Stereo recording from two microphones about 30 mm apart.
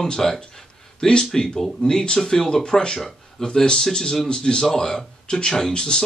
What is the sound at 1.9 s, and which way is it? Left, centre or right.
Speech, left.